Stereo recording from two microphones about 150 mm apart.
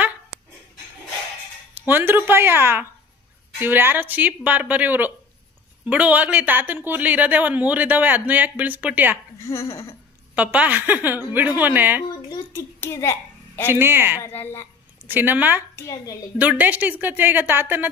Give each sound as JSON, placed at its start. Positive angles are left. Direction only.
{"t": 1.8, "sound": "speech", "side_deg": -15}
{"t": 9.4, "sound": "speech", "side_deg": 20}
{"t": 10.3, "sound": "speech", "side_deg": -10}
{"t": 12.1, "sound": "a sound", "side_deg": 25}
{"t": 12.8, "sound": "hands", "side_deg": 15}
{"t": 13.7, "sound": "speech", "side_deg": -15}
{"t": 14.2, "sound": "a woman's voice", "side_deg": 15}
{"t": 15.0, "sound": "speech", "side_deg": -15}
{"t": 15.7, "sound": "speech", "side_deg": 25}
{"t": 16.3, "sound": "speech", "side_deg": -10}